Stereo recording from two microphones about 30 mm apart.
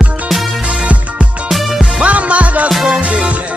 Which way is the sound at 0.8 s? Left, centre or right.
Right.